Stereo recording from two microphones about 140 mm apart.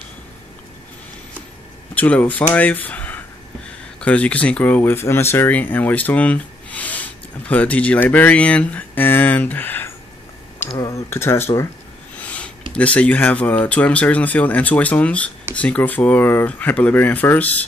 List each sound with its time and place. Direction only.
2.0 s speech: 10° left (ahead or behind)
10.8 s a sound: 20° left (ahead or behind)
12.7 s speech: 10° left (ahead or behind)